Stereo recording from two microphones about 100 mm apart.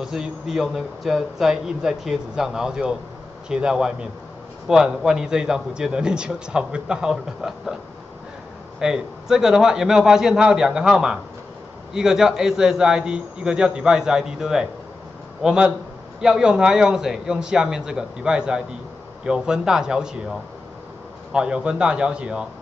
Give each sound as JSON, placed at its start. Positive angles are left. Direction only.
{"t": 0.0, "sound": "a man's voice", "side_deg": -5}
{"t": 8.7, "sound": "a man's voice", "side_deg": -5}